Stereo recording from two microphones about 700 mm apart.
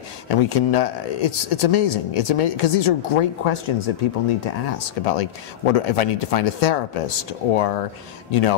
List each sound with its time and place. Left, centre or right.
0.3 s speech: left